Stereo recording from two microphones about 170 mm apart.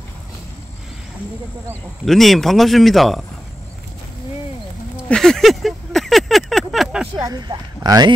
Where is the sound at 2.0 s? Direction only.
Centre (ahead or behind).